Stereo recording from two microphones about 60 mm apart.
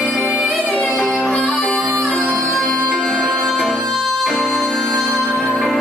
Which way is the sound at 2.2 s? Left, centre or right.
Left.